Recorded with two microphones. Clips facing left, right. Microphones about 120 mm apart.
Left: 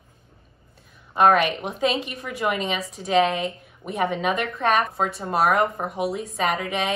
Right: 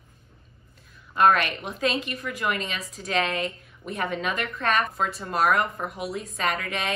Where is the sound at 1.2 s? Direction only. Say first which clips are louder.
Left 3 dB; 20° left (ahead or behind).